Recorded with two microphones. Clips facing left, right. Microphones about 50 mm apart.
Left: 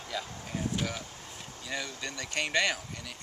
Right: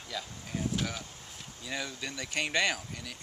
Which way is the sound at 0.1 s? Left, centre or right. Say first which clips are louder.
Left 2 dB; centre.